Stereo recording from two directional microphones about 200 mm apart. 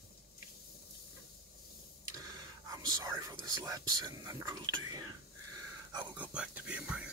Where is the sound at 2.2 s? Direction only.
20° right (ahead or behind).